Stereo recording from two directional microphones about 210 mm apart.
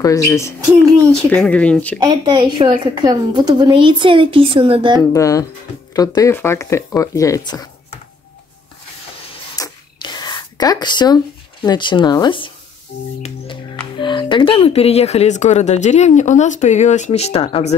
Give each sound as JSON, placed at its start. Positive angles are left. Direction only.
{"t": 0.0, "sound": "speech", "side_deg": 15}
{"t": 2.0, "sound": "a woman's voice", "side_deg": -20}
{"t": 5.1, "sound": "speech", "side_deg": 15}
{"t": 9.6, "sound": "whispering", "side_deg": 20}
{"t": 11.6, "sound": "speech", "side_deg": 20}
{"t": 12.9, "sound": "speech", "side_deg": 40}
{"t": 13.9, "sound": "speech", "side_deg": 20}